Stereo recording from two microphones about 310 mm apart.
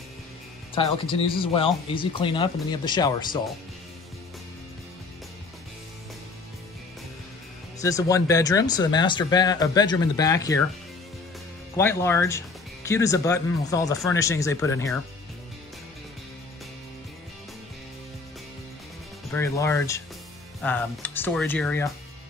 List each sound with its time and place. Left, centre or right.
0.7 s speech: centre
7.8 s speech: centre
11.7 s speech: centre
19.3 s speech: centre